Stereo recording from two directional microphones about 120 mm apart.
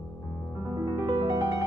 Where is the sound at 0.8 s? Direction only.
40° right (ahead or behind).